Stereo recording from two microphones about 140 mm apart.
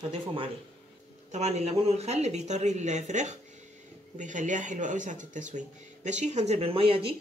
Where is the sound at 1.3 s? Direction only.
55° right (ahead or behind).